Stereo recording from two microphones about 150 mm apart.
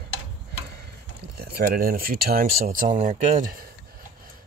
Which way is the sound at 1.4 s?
90° right.